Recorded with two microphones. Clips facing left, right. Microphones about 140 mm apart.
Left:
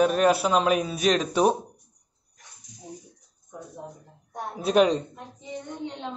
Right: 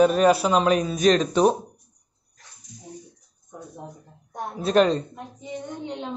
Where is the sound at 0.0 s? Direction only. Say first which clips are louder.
Right 3 dB; centre (ahead or behind).